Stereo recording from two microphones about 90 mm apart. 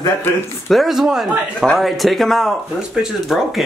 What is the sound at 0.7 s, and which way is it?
Speech, centre (ahead or behind).